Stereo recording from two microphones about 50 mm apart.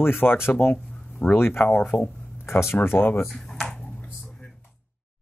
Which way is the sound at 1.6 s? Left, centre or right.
Left.